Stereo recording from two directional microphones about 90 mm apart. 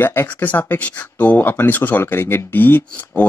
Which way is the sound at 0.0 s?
25° left (ahead or behind).